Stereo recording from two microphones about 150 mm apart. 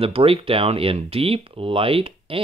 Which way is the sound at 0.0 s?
40° right (ahead or behind).